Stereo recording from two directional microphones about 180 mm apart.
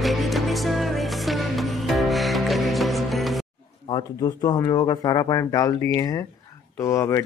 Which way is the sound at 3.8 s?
25° left (ahead or behind).